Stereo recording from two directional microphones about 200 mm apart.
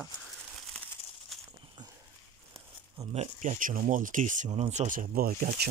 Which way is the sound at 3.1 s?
35° right (ahead or behind).